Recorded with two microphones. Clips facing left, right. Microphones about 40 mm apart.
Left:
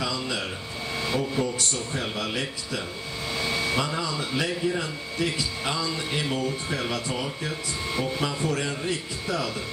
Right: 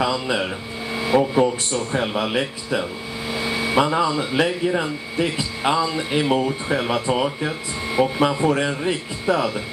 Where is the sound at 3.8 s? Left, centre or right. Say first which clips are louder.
Right 9 dB; right.